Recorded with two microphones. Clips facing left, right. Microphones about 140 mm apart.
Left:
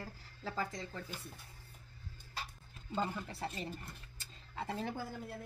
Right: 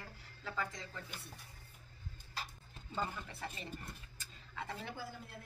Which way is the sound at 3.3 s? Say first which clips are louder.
Left 5 dB; 35° left (ahead or behind).